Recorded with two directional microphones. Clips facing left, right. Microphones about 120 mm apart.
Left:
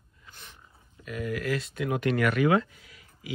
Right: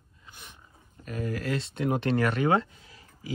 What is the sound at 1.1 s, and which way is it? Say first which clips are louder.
Speech: left 1 dB; 35° right (ahead or behind).